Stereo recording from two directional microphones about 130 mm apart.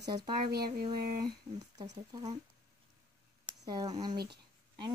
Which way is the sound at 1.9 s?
30° right (ahead or behind).